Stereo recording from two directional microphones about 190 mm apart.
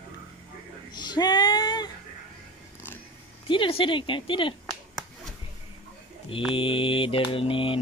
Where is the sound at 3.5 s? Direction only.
25° left (ahead or behind).